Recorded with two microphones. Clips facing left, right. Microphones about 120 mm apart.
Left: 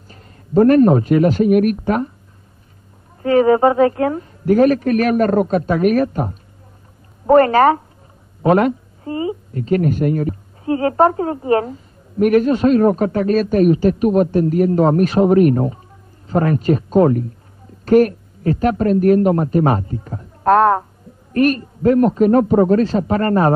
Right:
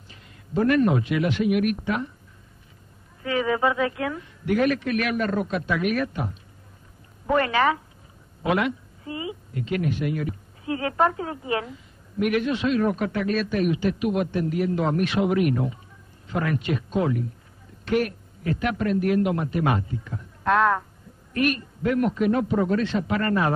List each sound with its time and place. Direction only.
0.1 s a man's voice: 40° left (ahead or behind)
3.2 s a woman's voice: 40° left (ahead or behind)